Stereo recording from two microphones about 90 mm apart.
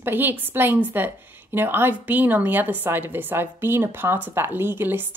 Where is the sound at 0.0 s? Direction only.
20° right (ahead or behind).